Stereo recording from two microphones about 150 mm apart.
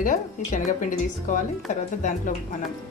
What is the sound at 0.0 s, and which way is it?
Speech, 60° left (ahead or behind).